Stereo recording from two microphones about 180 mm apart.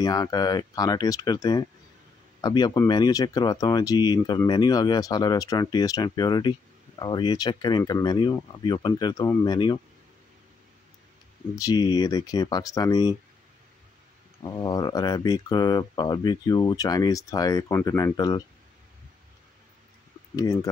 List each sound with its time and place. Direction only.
0.0 s speech: 20° left (ahead or behind)
11.5 s speech: 20° left (ahead or behind)
14.4 s speech: 20° left (ahead or behind)
20.3 s speech: 20° left (ahead or behind)